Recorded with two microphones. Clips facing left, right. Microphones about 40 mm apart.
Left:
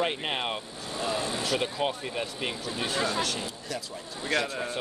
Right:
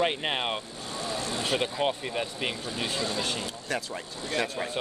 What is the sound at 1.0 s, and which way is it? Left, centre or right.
Vehicle, centre.